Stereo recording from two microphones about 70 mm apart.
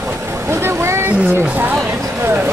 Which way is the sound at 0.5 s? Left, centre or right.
Right.